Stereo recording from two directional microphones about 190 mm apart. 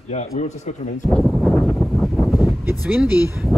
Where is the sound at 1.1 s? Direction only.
Centre (ahead or behind).